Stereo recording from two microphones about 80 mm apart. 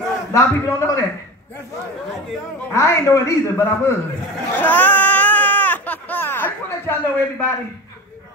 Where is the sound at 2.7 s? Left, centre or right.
Left.